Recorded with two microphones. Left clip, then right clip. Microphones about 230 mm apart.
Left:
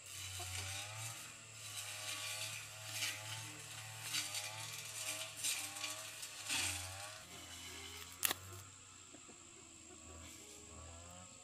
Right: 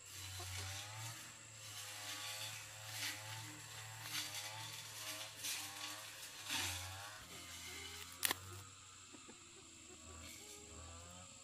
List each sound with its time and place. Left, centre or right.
0.4 s chainsaw: left
4.1 s mechanisms: left